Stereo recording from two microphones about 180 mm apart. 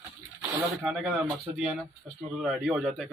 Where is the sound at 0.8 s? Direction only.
10° right (ahead or behind).